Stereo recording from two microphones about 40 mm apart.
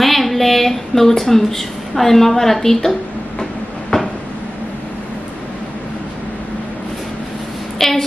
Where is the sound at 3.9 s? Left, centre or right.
Centre.